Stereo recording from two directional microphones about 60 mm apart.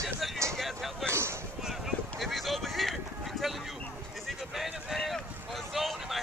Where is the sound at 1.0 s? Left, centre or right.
Right.